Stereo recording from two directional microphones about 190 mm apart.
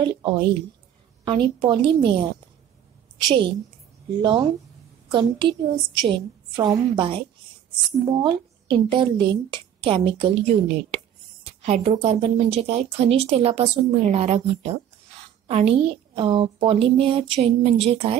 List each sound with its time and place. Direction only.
0.0 s a woman's voice: 25° right (ahead or behind)
8.2 s a woman's voice: 25° right (ahead or behind)